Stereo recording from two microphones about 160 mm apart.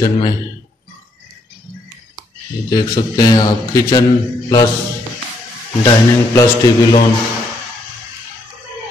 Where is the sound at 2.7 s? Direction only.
25° left (ahead or behind).